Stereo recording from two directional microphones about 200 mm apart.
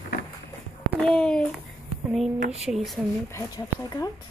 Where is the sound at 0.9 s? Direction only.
5° left (ahead or behind).